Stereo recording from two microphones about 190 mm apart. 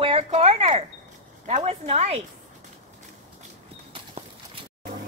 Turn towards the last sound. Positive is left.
turn(degrees=-30)  # may be behind; listen again after turning